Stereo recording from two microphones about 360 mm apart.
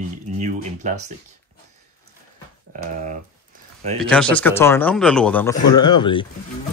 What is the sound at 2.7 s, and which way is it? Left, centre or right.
Speech, right.